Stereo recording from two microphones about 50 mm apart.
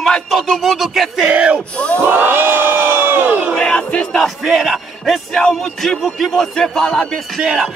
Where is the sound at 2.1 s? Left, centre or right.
Right.